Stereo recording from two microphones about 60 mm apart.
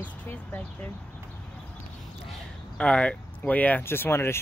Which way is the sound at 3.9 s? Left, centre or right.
Left.